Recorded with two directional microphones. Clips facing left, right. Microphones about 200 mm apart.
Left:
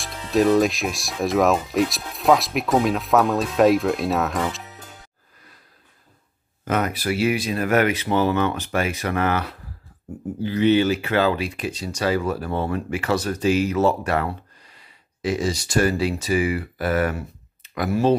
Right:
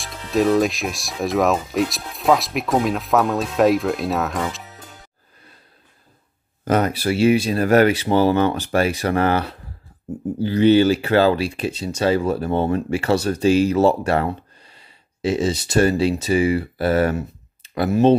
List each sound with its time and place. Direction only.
0.0 s speech: centre (ahead or behind)
6.6 s speech: 35° right (ahead or behind)